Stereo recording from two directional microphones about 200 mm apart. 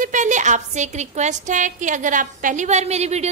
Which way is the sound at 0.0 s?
40° right (ahead or behind).